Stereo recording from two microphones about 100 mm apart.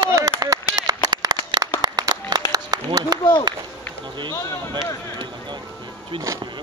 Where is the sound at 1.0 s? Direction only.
45° right (ahead or behind).